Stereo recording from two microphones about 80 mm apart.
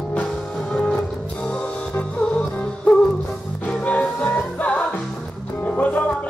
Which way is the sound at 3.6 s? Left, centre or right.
Centre.